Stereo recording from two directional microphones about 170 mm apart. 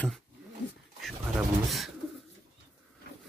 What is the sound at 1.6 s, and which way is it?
Speech, centre (ahead or behind).